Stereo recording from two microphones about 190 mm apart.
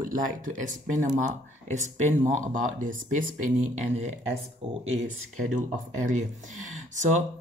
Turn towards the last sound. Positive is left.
turn(degrees=-40)  # may be behind; listen again after turning